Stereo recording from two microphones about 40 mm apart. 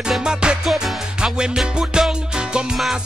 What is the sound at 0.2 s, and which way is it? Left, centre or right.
Music, right.